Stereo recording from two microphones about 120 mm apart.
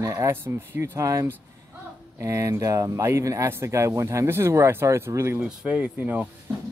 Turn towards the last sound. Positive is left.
turn(degrees=-15)  # may be behind; listen again after turning